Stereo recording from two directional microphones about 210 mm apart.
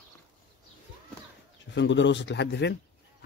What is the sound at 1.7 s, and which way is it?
Speech, 60° left (ahead or behind).